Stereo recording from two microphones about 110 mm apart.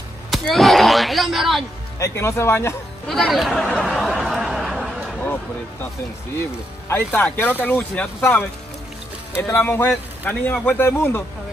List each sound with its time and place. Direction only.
0.3 s speech: centre (ahead or behind)
2.0 s speech: 25° left (ahead or behind)
3.1 s speech: centre (ahead or behind)
3.8 s a sound: 5° right (ahead or behind)
4.2 s snicker: centre (ahead or behind)
5.2 s a sound: 15° left (ahead or behind)
6.9 s speech: 20° left (ahead or behind)